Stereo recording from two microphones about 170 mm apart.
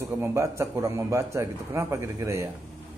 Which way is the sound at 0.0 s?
15° right (ahead or behind).